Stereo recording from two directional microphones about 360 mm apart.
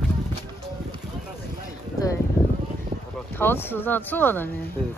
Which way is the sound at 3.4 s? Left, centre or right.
Centre.